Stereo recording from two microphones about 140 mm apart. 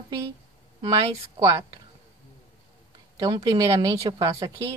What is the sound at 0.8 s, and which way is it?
Speech, 30° right (ahead or behind).